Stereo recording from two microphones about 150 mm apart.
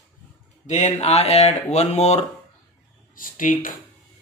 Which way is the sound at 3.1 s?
65° left (ahead or behind).